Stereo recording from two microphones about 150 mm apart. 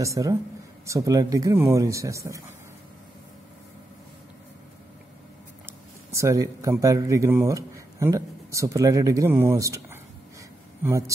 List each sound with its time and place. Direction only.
0.0 s speech: 20° right (ahead or behind)
5.7 s speech: 20° right (ahead or behind)